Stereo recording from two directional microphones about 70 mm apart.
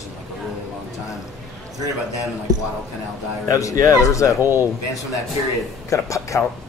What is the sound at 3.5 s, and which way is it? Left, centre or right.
Speech, left.